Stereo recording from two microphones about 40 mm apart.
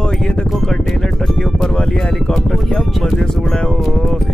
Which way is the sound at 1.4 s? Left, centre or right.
Centre.